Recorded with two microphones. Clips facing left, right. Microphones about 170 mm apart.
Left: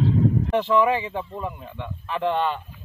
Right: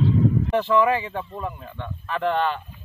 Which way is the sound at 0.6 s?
15° left (ahead or behind).